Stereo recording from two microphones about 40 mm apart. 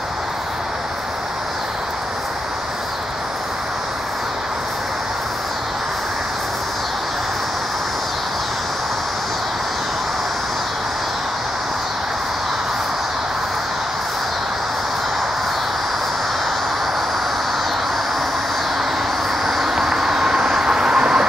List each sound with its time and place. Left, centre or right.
19.4 s vehicle: centre